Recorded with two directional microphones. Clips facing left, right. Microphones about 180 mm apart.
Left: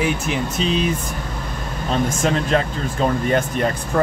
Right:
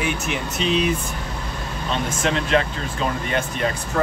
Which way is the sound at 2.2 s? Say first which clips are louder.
Right 1 dB; 45° left (ahead or behind).